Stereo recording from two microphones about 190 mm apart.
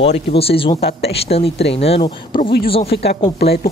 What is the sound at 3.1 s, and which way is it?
Speech, 55° left (ahead or behind).